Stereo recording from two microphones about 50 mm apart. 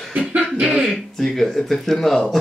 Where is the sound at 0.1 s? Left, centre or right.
Right.